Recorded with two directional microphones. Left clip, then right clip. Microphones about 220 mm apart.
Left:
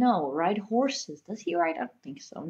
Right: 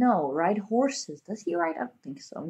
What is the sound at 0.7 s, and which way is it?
Speech, centre (ahead or behind).